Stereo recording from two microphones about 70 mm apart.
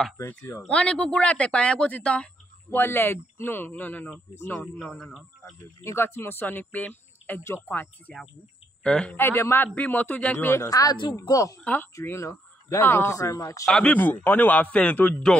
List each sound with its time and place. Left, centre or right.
0.6 s speech: centre
2.7 s speech: left
4.9 s speech: centre
5.4 s speech: left
8.8 s speech: centre
9.1 s speech: left
9.8 s speech: left
10.7 s speech: left
11.6 s speech: left
11.9 s speech: left
13.8 s speech: left